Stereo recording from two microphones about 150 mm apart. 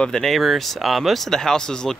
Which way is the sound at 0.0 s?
5° left (ahead or behind).